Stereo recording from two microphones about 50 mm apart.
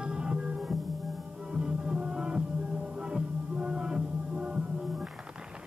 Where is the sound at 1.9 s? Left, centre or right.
Centre.